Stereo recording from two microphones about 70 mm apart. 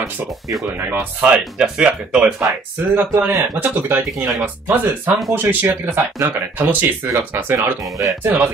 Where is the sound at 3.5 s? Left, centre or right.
Right.